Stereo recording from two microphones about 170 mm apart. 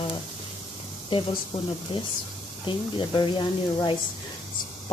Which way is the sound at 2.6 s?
25° left (ahead or behind).